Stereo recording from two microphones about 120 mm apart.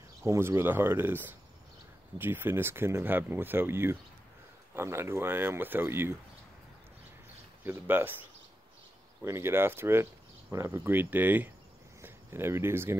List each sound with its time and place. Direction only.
0.2 s speech: 20° right (ahead or behind)
7.6 s speech: 15° right (ahead or behind)